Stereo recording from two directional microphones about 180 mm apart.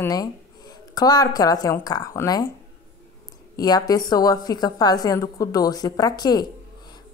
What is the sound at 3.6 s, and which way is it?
Speech, 20° left (ahead or behind).